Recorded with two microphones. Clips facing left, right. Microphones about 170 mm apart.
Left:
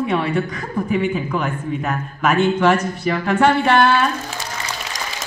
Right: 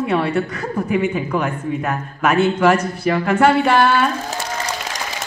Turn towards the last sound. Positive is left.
turn(degrees=-5)  # may be behind; listen again after turning